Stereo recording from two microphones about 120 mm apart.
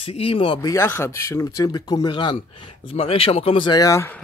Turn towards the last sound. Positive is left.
turn(degrees=30)  # may be behind; listen again after turning